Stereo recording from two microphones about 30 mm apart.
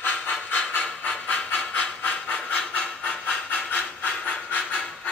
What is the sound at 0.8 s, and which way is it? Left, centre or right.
Train, left.